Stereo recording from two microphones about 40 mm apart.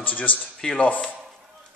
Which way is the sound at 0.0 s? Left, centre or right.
Left.